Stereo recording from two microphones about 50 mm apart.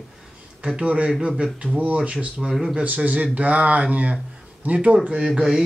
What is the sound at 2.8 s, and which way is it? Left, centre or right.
Speech, right.